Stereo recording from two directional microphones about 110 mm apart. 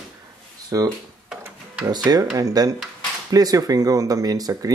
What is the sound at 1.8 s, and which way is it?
Speech, 35° right (ahead or behind).